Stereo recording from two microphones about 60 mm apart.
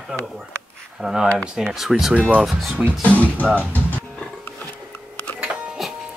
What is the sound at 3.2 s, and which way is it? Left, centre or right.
Speech, left.